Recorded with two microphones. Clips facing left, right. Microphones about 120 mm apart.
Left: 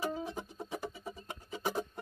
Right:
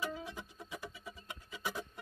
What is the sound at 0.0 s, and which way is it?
Music, 35° left (ahead or behind).